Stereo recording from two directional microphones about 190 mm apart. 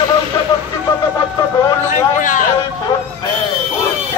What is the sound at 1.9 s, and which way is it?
Speech, 40° left (ahead or behind).